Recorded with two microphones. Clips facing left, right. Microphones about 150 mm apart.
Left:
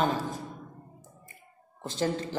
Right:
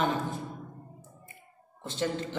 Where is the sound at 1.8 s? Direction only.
40° left (ahead or behind).